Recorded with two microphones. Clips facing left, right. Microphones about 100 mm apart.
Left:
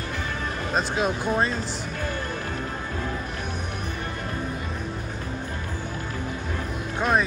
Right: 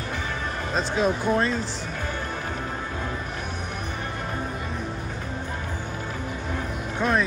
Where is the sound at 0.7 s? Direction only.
15° left (ahead or behind).